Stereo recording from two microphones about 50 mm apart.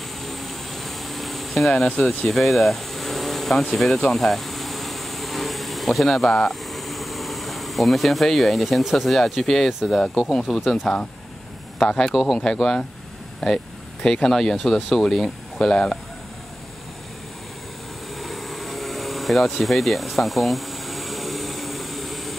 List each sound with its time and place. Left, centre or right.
0.2 s a sound: centre
9.9 s speech: centre
12.1 s speech: centre
12.5 s speech: centre
18.1 s vehicle: centre